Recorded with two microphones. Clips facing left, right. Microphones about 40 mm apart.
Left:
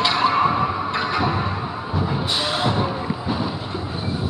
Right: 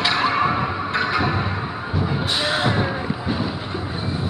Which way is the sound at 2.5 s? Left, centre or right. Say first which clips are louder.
Right 1 dB; centre.